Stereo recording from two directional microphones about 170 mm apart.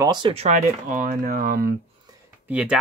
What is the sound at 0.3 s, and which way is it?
Speech, 40° right (ahead or behind).